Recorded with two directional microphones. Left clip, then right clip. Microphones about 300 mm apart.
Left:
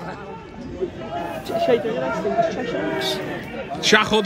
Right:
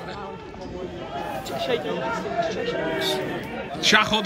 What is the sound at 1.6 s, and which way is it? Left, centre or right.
Speech, left.